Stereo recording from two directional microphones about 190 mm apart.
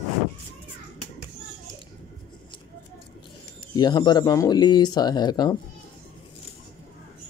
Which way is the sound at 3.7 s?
20° left (ahead or behind).